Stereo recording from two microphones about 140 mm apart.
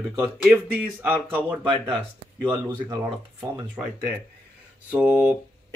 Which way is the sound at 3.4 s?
15° right (ahead or behind).